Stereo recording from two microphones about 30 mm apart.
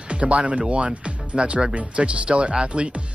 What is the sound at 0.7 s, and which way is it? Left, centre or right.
Speech, right.